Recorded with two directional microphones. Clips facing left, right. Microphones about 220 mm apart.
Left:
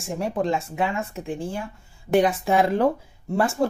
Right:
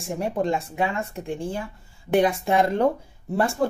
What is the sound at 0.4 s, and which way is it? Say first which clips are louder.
Speech: even; centre (ahead or behind).